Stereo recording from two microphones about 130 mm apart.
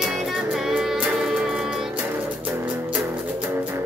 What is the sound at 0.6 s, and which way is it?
Music, 5° right (ahead or behind).